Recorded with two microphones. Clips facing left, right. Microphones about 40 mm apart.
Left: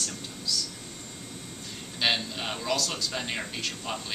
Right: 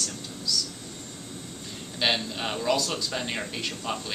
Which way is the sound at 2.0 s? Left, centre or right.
Centre.